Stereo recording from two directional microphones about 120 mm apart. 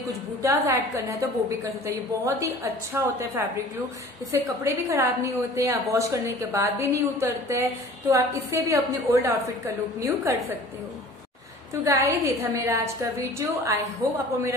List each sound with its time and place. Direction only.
0.0 s a woman's voice: 25° right (ahead or behind)
11.7 s a woman's voice: 25° right (ahead or behind)